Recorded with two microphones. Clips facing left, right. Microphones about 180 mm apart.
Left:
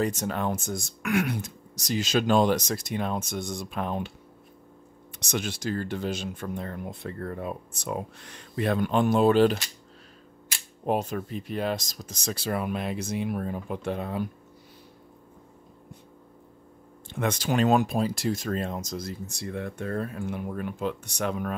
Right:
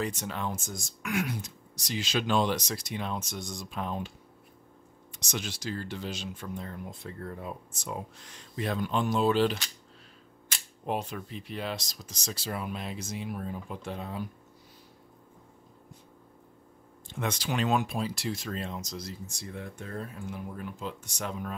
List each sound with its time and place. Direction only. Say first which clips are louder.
0.0 s speech: left 6 dB; 45° left (ahead or behind); by 1.5 s 60° left (ahead or behind)
1.8 s speech: left 6 dB; 45° left (ahead or behind); by 4.1 s 60° left (ahead or behind)
5.2 s speech: left 6 dB; 55° left (ahead or behind)
10.9 s speech: left 6 dB; 45° left (ahead or behind); by 14.2 s 60° left (ahead or behind)
17.1 s speech: left 5 dB; 55° left (ahead or behind)